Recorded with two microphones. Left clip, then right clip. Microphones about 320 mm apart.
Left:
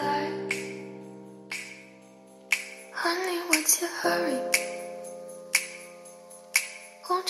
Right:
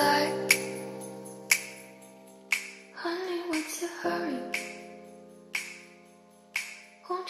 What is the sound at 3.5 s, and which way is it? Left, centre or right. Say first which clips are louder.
Music: left 7 dB; left.